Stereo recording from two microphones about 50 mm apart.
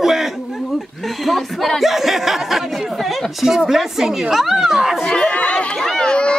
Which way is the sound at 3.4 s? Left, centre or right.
Centre.